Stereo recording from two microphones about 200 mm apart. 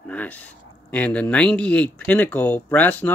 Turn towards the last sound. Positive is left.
turn(degrees=10)  # may be behind; listen again after turning